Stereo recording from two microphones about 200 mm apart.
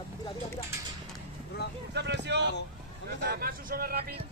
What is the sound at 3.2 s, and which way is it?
Speech, 50° right (ahead or behind).